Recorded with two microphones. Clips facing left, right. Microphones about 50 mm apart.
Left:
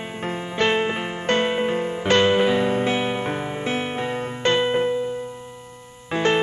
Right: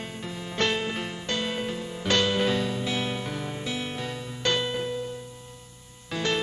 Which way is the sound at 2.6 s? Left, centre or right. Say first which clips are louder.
Left 8 dB; left.